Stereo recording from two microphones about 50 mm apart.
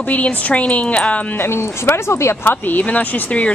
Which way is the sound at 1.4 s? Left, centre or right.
Left.